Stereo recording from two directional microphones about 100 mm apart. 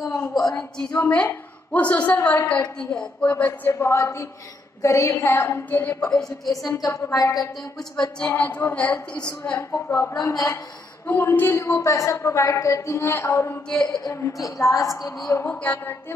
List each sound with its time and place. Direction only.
0.0 s a sound: 30° left (ahead or behind)
0.3 s a woman's voice: 5° left (ahead or behind)
0.9 s a woman's voice: 20° left (ahead or behind)
3.7 s a woman's voice: 30° left (ahead or behind); by 6.2 s 10° left (ahead or behind)
6.8 s a woman's voice: 35° left (ahead or behind)
8.2 s a woman's voice: 15° left (ahead or behind)
10.1 s a woman's voice: 35° left (ahead or behind)
11.1 s a woman's voice: 25° left (ahead or behind)
15.6 s a woman's voice: 15° left (ahead or behind)